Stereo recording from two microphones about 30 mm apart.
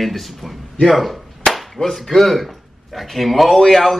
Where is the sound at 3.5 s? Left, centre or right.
Centre.